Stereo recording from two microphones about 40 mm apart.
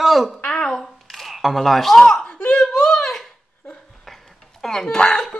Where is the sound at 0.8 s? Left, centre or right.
Centre.